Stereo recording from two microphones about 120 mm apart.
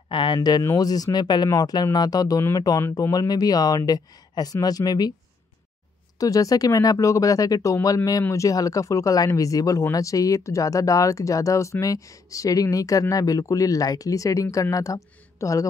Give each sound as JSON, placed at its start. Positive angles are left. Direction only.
{"t": 0.1, "sound": "speech", "side_deg": 40}
{"t": 6.1, "sound": "speech", "side_deg": 30}